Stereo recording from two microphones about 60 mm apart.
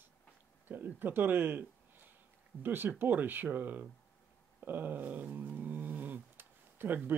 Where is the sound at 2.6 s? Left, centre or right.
Right.